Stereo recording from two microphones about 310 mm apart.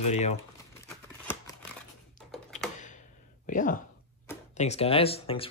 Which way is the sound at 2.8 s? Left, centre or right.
Left.